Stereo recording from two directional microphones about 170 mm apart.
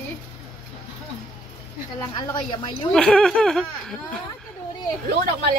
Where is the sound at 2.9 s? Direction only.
5° left (ahead or behind).